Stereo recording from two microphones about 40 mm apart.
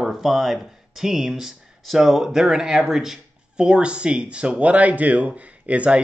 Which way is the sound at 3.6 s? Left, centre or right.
Right.